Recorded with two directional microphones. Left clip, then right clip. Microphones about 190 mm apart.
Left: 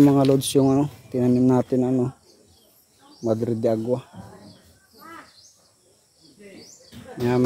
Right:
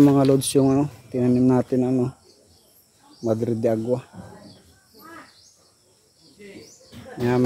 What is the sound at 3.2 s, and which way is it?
Speech, centre (ahead or behind).